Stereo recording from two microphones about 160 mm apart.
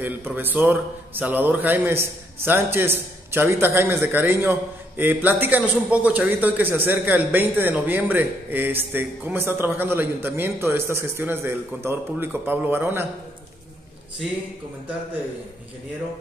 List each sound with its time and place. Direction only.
0.0 s a man's voice: 10° right (ahead or behind)